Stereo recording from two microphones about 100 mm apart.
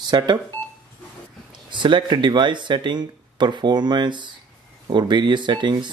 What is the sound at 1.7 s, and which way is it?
Speech, 50° right (ahead or behind).